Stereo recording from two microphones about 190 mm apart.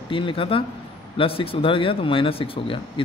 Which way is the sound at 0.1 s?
25° left (ahead or behind).